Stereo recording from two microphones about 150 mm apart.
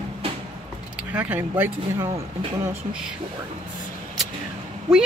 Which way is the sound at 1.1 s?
10° right (ahead or behind).